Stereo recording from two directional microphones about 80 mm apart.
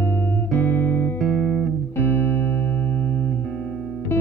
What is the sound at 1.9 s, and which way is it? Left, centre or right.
Music, left.